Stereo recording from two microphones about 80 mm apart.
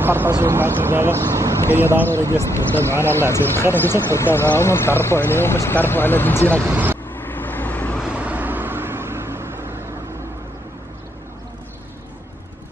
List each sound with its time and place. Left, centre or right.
0.0 s speech: right
3.0 s speech: left
6.7 s speech: right
7.2 s vehicle: left
8.0 s vehicle: centre